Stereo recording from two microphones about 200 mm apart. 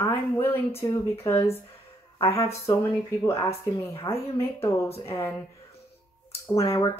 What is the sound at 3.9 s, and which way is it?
Speech, 15° left (ahead or behind).